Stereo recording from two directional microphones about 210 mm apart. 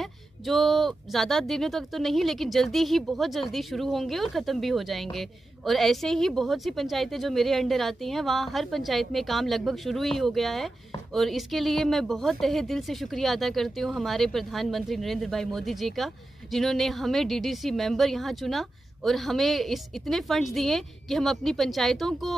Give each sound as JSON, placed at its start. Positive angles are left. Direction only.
{"t": 0.0, "sound": "speech", "side_deg": 0}